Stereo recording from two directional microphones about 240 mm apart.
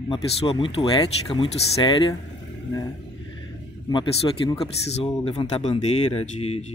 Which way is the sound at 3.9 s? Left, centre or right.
Centre.